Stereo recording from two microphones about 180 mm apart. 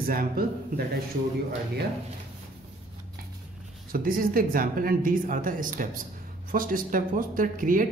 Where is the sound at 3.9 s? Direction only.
50° right (ahead or behind).